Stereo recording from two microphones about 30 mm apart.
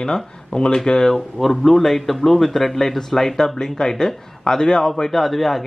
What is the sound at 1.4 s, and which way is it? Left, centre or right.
A man's voice, centre.